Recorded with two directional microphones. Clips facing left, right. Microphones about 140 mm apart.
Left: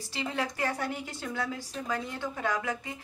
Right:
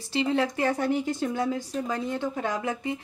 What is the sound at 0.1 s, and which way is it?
Speech, 25° right (ahead or behind).